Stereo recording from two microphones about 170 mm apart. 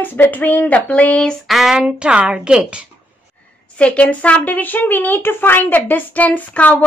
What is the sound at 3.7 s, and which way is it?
A woman's voice, 5° left (ahead or behind).